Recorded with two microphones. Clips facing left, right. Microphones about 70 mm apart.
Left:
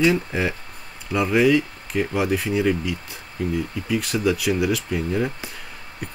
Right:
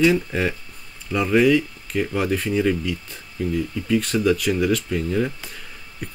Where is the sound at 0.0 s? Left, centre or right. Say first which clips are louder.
Right 1 dB; centre.